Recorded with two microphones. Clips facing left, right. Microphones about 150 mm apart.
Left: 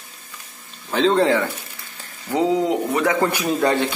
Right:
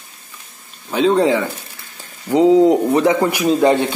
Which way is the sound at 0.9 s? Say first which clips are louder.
Right 3 dB; 10° right (ahead or behind).